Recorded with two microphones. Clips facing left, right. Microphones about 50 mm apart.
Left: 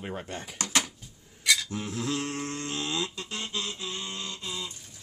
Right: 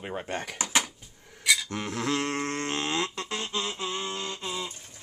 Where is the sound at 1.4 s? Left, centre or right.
Centre.